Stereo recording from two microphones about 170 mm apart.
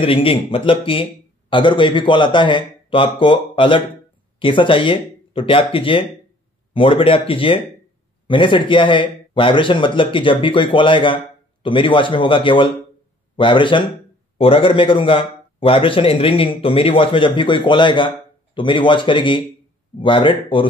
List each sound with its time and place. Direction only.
0.0 s a man's voice: 35° left (ahead or behind)